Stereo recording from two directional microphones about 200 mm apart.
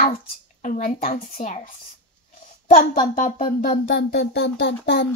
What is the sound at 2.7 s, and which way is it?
Speech, 40° left (ahead or behind).